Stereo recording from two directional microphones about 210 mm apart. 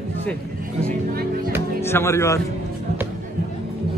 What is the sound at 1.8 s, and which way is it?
Speech, 10° left (ahead or behind).